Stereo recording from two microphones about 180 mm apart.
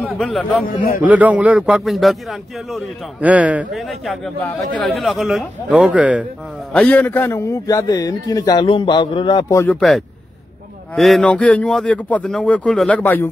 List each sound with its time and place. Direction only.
0.0 s a man's voice: 5° left (ahead or behind)
6.7 s a man's voice: 10° left (ahead or behind)
9.8 s speech: 5° left (ahead or behind)